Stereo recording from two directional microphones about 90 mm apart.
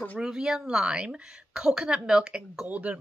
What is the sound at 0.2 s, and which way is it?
Speech, 5° right (ahead or behind).